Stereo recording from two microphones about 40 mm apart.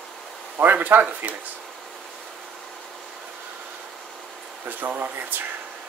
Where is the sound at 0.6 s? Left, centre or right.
Right.